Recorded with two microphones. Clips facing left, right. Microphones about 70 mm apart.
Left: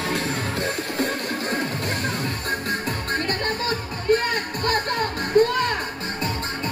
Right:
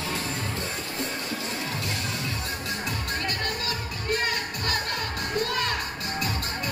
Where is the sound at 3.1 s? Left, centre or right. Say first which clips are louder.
Left 7 dB; left.